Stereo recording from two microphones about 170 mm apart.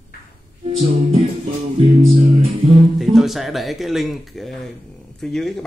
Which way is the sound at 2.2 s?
35° right (ahead or behind).